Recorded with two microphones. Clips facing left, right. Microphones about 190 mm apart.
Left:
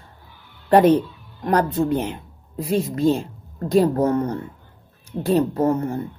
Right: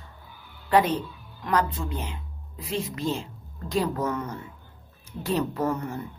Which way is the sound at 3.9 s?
35° left (ahead or behind).